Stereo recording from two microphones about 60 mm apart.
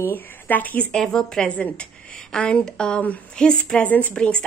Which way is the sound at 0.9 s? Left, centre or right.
Centre.